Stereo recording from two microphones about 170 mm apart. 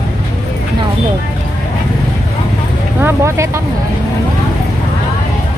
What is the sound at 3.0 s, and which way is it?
Speech, 15° right (ahead or behind).